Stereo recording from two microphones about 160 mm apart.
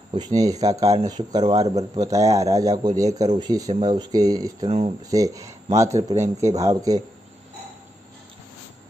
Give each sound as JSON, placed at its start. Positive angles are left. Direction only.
{"t": 0.1, "sound": "speech", "side_deg": -25}
{"t": 4.6, "sound": "speech", "side_deg": -35}
{"t": 5.1, "sound": "speech", "side_deg": -20}